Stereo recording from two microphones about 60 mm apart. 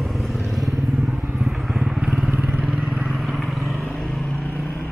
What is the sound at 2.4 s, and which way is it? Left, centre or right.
Vehicle, right.